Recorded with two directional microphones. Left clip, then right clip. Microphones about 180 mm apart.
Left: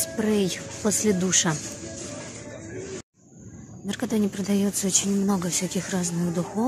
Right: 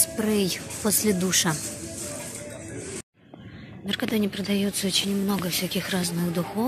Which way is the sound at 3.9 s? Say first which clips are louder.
Right 1 dB; 20° left (ahead or behind).